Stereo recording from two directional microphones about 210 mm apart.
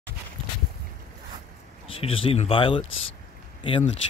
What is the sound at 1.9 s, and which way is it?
Speech, 25° left (ahead or behind).